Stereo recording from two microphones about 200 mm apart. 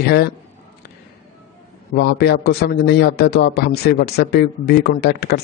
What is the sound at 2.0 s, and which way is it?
A man's voice, 55° left (ahead or behind).